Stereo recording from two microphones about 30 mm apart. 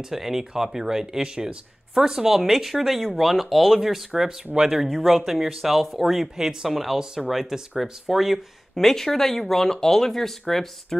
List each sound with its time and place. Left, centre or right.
0.1 s speech: centre
4.1 s speech: centre
4.8 s speech: centre
5.1 s speech: centre
6.3 s speech: centre
6.7 s speech: centre
8.7 s speech: centre